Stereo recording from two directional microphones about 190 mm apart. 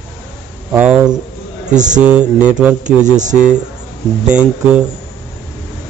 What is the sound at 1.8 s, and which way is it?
Speech, 40° right (ahead or behind).